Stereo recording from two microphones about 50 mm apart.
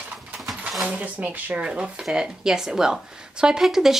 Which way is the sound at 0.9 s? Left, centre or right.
Right.